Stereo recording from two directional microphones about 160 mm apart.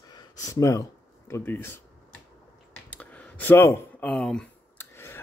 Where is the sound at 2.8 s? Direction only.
10° left (ahead or behind).